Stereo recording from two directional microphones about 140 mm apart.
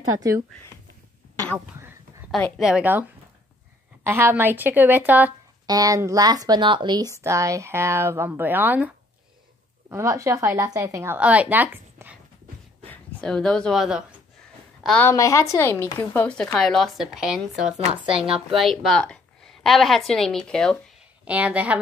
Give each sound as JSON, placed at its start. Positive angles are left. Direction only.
{"t": 2.6, "sound": "speech", "side_deg": -10}
{"t": 5.7, "sound": "speech", "side_deg": -25}
{"t": 7.2, "sound": "speech", "side_deg": -20}
{"t": 11.1, "sound": "speech", "side_deg": -10}
{"t": 12.9, "sound": "speech", "side_deg": 5}
{"t": 15.0, "sound": "speech", "side_deg": 20}
{"t": 17.7, "sound": "speech", "side_deg": -40}
{"t": 18.6, "sound": "a woman's voice", "side_deg": 0}
{"t": 21.3, "sound": "speech", "side_deg": -10}